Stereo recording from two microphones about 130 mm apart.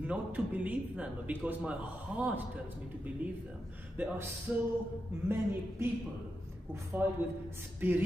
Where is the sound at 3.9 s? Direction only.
15° right (ahead or behind).